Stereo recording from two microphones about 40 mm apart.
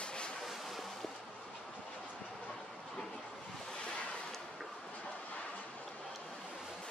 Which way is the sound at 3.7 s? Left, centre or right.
Left.